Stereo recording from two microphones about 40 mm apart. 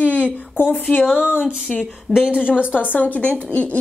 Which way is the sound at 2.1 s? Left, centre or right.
Right.